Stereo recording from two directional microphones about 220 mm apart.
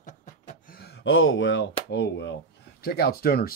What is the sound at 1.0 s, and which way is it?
Speech, 60° left (ahead or behind).